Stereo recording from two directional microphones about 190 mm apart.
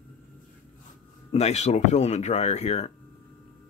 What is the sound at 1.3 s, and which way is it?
Speech, 35° left (ahead or behind).